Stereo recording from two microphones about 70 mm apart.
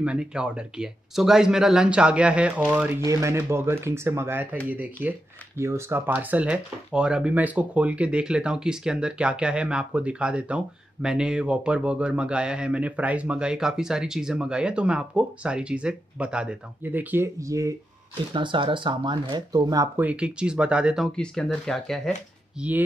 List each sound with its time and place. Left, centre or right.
0.0 s speech: centre
3.1 s speech: right
5.6 s speech: right
6.0 s speech: right
16.8 s speech: right
17.4 s speech: right
18.9 s speech: right
20.0 s speech: centre
21.2 s speech: centre
22.6 s speech: right